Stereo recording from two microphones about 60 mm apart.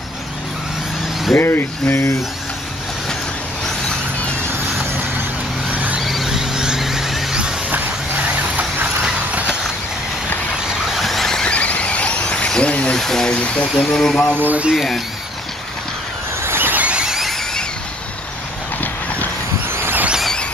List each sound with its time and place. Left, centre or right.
1.3 s speech: left
5.7 s vehicle: right
6.0 s a sound: centre
7.7 s vehicle: right
10.6 s vehicle: centre
11.0 s vehicle: centre
11.4 s squeal: left
12.9 s a sound: centre
13.8 s speech: centre
14.4 s speech: right
16.4 s vehicle: right
16.8 s a sound: centre
19.7 s vehicle: right